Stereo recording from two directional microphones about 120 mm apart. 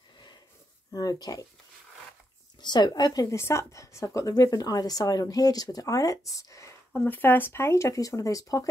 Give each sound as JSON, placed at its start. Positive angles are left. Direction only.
{"t": 0.9, "sound": "speech", "side_deg": 30}
{"t": 2.6, "sound": "a woman's voice", "side_deg": 35}